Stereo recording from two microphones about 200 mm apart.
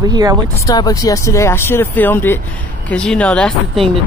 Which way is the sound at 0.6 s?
20° left (ahead or behind).